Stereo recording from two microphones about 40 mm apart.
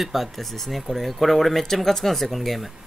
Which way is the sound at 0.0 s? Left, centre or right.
Centre.